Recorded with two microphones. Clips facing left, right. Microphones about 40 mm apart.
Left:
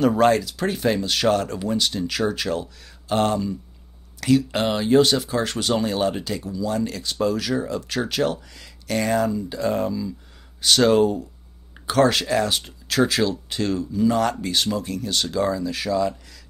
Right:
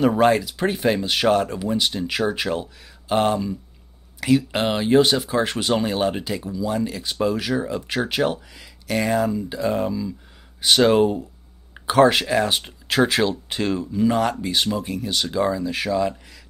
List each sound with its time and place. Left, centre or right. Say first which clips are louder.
0.0 s speech: even; centre